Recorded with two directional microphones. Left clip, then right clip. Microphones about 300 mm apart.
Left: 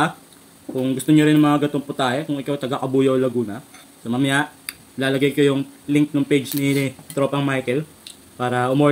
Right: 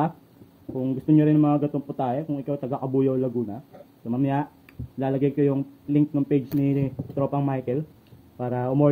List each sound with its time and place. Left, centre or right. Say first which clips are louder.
0.8 s speech: left 4 dB; centre